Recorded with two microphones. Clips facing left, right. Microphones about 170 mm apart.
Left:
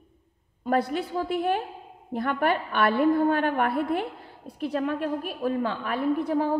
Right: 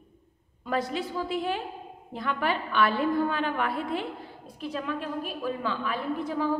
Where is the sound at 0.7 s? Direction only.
55° left (ahead or behind).